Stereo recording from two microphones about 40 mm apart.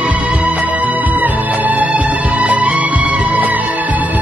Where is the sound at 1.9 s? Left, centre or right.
Right.